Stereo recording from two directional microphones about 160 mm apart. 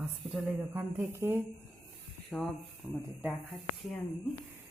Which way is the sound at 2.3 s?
10° left (ahead or behind).